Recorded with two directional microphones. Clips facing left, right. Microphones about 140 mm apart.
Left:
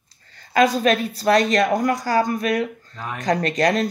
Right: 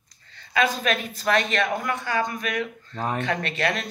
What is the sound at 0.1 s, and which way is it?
A woman's voice, 35° left (ahead or behind).